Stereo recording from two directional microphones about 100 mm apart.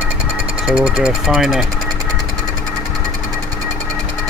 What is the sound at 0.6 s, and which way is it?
Speech, 5° right (ahead or behind).